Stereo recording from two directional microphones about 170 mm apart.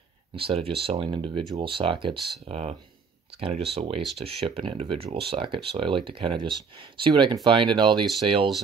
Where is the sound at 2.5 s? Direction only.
35° right (ahead or behind).